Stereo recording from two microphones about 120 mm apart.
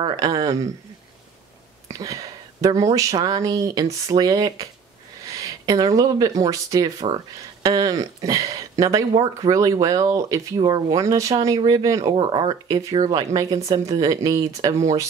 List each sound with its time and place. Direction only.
0.1 s speech: 30° right (ahead or behind)
1.9 s speech: 30° right (ahead or behind)